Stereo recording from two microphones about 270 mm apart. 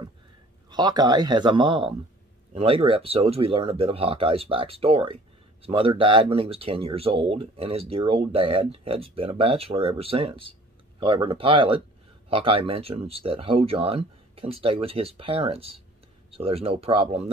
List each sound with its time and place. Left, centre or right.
0.7 s speech: centre